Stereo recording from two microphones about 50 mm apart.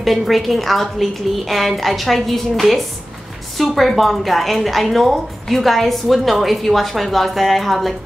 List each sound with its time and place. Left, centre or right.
0.0 s speech: centre